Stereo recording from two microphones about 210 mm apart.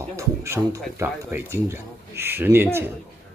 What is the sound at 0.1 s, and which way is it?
Speech, 10° right (ahead or behind).